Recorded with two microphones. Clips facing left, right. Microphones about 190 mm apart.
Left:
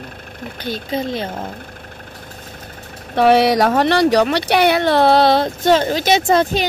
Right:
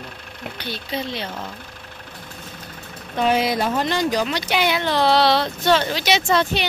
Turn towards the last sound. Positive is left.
turn(degrees=50)  # may be behind; listen again after turning